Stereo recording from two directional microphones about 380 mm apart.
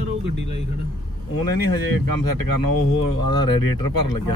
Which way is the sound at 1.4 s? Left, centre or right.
Left.